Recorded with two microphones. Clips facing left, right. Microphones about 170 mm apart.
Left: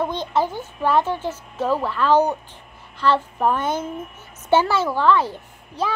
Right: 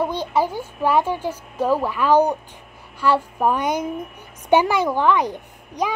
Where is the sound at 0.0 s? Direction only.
10° right (ahead or behind).